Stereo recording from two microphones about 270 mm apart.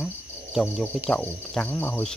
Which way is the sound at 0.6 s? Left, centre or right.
Centre.